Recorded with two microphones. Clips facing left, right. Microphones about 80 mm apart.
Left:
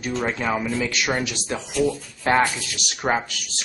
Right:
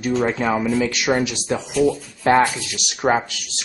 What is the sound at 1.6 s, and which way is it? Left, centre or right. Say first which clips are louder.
Speech: right 4 dB; centre.